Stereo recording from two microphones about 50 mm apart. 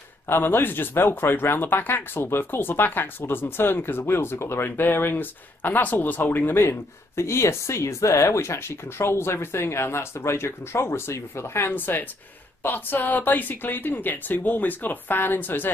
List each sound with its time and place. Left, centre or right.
0.3 s speech: left
6.6 s speech: left
11.7 s a woman's voice: left